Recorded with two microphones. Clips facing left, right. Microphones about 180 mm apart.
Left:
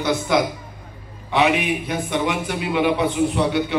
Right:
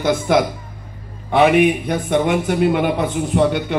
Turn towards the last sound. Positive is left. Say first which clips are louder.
# right 3 dB
turn(degrees=-50)  # may be behind; listen again after turning